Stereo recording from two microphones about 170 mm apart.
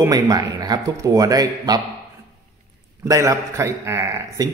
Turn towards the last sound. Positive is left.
turn(degrees=-20)  # may be behind; listen again after turning